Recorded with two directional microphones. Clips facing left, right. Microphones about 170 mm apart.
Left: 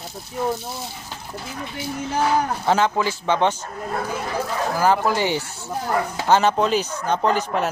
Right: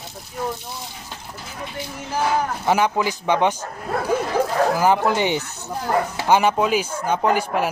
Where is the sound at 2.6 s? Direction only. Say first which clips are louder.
Right 2 dB; 10° right (ahead or behind).